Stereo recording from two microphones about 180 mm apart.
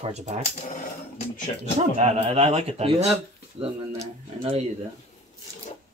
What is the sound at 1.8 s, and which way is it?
Speech, 40° right (ahead or behind).